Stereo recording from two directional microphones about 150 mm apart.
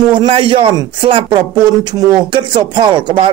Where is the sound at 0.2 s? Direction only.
35° right (ahead or behind).